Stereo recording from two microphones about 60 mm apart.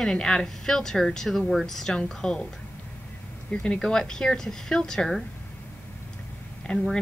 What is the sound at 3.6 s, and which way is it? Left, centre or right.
A woman's voice, centre.